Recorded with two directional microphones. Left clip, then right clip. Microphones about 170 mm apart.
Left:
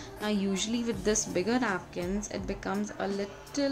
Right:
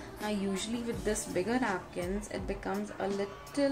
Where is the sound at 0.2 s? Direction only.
25° left (ahead or behind).